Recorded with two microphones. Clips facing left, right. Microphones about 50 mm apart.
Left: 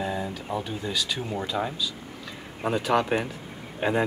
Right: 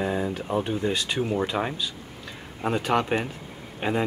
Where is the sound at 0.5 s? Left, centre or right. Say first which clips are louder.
Right 4 dB; right.